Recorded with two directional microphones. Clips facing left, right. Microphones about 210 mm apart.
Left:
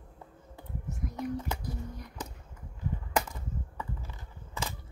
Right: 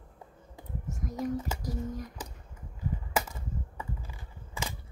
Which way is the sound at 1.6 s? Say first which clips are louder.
Right 5 dB; 40° right (ahead or behind).